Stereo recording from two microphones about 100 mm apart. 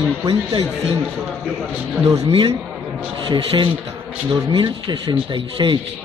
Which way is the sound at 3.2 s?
55° right (ahead or behind).